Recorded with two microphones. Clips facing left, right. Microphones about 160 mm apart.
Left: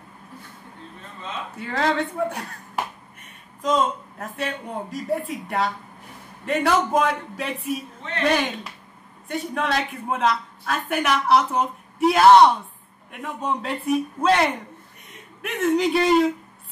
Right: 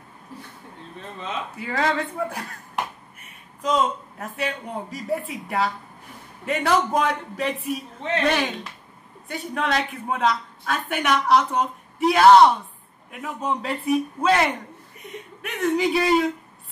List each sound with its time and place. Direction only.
1.6 s a woman's voice: centre (ahead or behind)